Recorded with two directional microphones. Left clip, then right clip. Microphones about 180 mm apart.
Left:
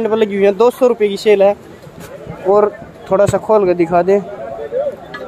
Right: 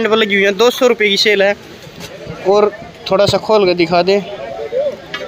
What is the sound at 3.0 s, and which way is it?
Speech, 5° left (ahead or behind).